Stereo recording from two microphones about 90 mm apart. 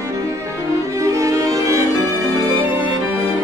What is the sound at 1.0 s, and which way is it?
Music, 35° right (ahead or behind).